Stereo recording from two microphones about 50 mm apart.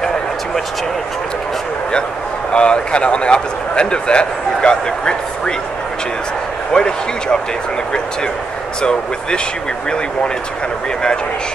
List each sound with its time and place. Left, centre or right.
2.5 s speech: centre
6.7 s speech: centre